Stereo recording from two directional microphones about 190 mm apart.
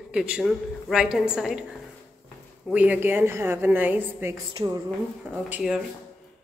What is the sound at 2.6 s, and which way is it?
A woman's voice, 10° right (ahead or behind).